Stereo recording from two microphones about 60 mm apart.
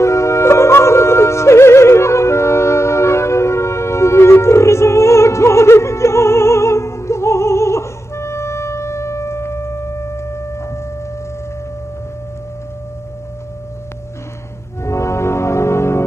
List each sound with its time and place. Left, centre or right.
0.0 s music: left
14.8 s music: left